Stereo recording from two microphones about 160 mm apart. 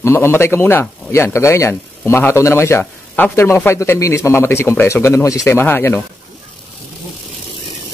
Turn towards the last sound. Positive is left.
turn(degrees=15)  # may be behind; listen again after turning